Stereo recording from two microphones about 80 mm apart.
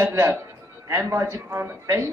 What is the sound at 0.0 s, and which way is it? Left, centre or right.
A woman's voice, right.